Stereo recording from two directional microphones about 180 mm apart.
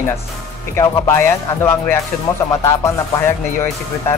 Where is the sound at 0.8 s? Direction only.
15° left (ahead or behind).